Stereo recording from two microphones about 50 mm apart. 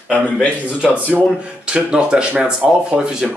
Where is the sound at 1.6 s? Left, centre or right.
Centre.